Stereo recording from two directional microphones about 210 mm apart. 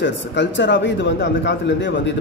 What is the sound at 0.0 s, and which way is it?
Speech, 55° left (ahead or behind).